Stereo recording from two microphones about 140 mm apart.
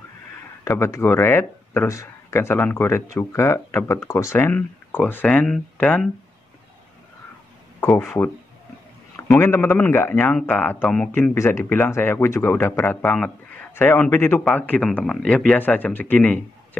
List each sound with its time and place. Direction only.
0.7 s speech: 20° left (ahead or behind)
9.1 s speech: 20° left (ahead or behind)